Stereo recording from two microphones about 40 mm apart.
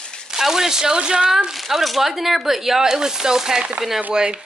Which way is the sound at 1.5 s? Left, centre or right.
Centre.